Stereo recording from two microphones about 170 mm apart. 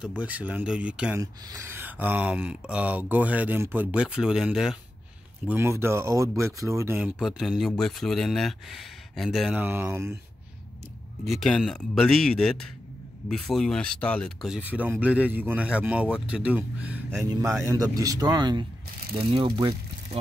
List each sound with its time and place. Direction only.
0.2 s speech: 10° right (ahead or behind)
1.2 s speech: 15° right (ahead or behind)
7.2 s speech: centre (ahead or behind)
11.2 s speech: centre (ahead or behind)
14.6 s speech: 10° right (ahead or behind); by 20.2 s 30° right (ahead or behind)